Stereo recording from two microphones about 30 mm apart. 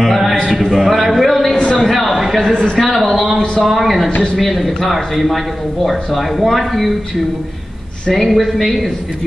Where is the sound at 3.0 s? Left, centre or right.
Centre.